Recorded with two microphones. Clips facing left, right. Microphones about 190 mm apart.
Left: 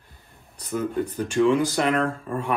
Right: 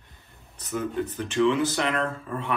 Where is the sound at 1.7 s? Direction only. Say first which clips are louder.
Left 4 dB; 45° left (ahead or behind).